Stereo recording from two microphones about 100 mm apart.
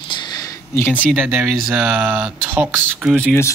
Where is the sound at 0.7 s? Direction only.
20° left (ahead or behind).